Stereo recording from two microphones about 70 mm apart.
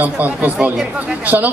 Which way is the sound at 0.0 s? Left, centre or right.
Right.